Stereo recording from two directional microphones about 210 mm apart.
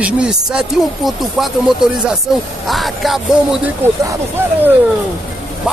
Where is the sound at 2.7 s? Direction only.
Centre (ahead or behind).